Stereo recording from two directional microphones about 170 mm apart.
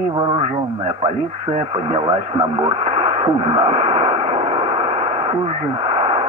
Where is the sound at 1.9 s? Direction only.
35° right (ahead or behind).